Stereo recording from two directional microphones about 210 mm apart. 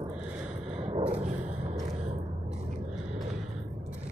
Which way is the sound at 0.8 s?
30° right (ahead or behind).